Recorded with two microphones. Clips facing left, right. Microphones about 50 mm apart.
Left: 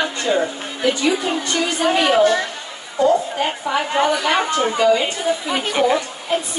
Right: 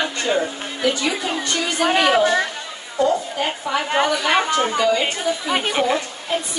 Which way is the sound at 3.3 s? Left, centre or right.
Centre.